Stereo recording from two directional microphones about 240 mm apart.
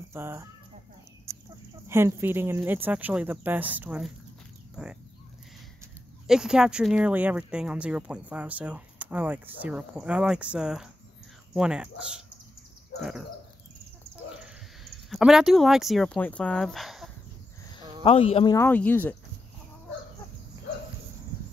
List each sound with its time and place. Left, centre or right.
0.1 s speech: centre
1.3 s chicken: centre
1.9 s speech: centre
6.2 s speech: centre
14.3 s speech: centre
18.0 s speech: left; by 19.1 s centre